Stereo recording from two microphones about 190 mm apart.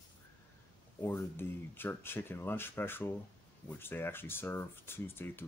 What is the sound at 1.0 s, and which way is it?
Speech, 10° left (ahead or behind).